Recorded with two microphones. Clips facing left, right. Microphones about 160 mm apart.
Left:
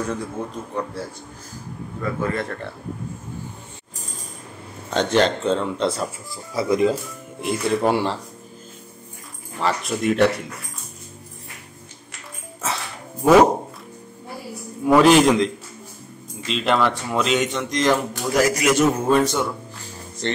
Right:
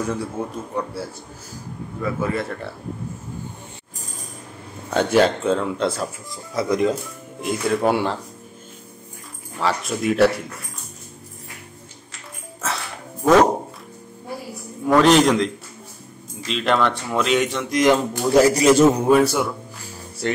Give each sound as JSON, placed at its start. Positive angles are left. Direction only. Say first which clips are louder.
{"t": 0.4, "sound": "a man's voice", "louder": "right 2 dB", "side_deg": -10}
{"t": 2.0, "sound": "a man's voice", "louder": "right 1 dB", "side_deg": -5}
{"t": 4.9, "sound": "speech", "louder": "right 2 dB", "side_deg": -5}
{"t": 9.6, "sound": "speech", "louder": "even", "side_deg": 0}
{"t": 12.6, "sound": "dog", "louder": "even", "side_deg": 5}
{"t": 14.9, "sound": "speech", "louder": "left 1 dB", "side_deg": 5}
{"t": 17.8, "sound": "speech", "louder": "right 4 dB", "side_deg": -25}
{"t": 18.9, "sound": "a man's voice", "louder": "right 2 dB", "side_deg": -10}